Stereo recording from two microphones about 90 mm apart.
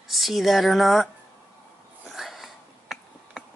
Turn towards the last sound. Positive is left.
turn(degrees=0)  # may be behind; listen again after turning